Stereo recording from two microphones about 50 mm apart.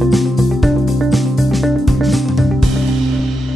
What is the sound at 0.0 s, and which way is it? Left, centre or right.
Music, centre.